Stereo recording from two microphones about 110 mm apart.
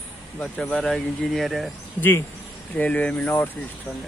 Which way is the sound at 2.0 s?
20° left (ahead or behind).